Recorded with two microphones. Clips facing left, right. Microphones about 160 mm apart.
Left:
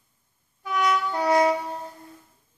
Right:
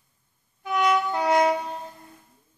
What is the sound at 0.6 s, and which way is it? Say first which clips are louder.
Music: right 2 dB; 20° right (ahead or behind).